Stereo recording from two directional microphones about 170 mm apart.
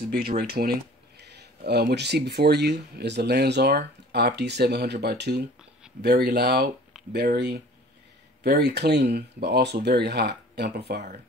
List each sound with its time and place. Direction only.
0.1 s speech: 65° right (ahead or behind)